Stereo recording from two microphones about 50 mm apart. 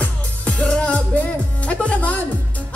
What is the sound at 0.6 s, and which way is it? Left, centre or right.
Music, centre.